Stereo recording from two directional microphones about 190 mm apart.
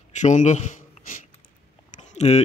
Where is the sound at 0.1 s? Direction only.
40° left (ahead or behind).